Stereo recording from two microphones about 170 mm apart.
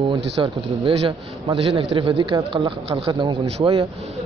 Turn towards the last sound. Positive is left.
turn(degrees=-35)  # may be behind; listen again after turning